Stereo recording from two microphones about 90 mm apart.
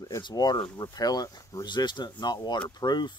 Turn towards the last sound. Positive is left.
turn(degrees=55)  # may be behind; listen again after turning